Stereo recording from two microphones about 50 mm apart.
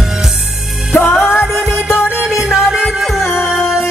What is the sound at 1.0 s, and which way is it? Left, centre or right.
Music, centre.